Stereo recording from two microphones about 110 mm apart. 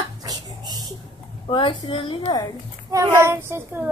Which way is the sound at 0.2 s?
35° right (ahead or behind).